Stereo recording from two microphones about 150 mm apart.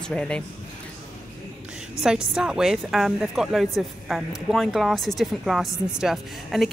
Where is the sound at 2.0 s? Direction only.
5° right (ahead or behind).